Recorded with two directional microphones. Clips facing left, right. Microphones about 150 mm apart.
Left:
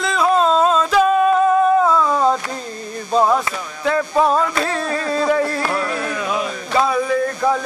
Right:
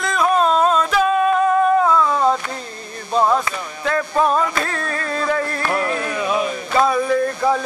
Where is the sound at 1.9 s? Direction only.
5° left (ahead or behind).